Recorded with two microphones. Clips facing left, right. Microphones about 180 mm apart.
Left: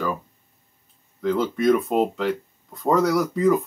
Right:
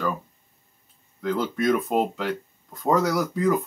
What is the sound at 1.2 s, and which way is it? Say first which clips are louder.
Speech: left 3 dB; centre (ahead or behind).